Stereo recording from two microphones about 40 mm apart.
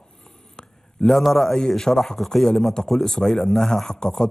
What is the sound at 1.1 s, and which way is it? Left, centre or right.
Speech, centre.